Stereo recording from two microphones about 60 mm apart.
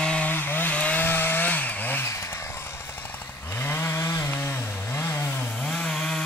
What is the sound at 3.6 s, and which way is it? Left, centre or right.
Chainsaw, left.